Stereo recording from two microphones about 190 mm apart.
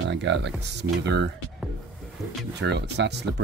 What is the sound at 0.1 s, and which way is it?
Speech, 70° right (ahead or behind).